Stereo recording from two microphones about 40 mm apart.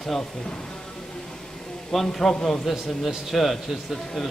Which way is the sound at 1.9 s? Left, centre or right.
Centre.